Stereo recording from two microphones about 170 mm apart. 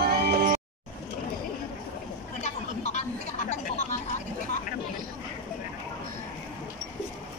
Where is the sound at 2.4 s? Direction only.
45° left (ahead or behind).